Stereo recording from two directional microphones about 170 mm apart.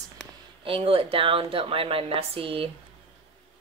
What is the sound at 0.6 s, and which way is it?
A woman's voice, 30° right (ahead or behind).